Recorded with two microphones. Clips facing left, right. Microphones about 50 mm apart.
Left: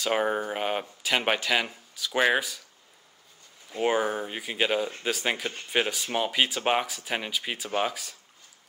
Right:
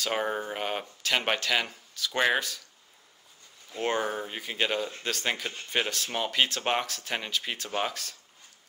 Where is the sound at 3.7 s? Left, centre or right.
Centre.